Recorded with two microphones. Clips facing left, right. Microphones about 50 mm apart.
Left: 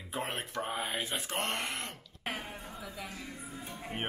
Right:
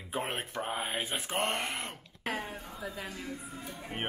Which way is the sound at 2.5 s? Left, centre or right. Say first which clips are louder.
Right 1 dB; centre.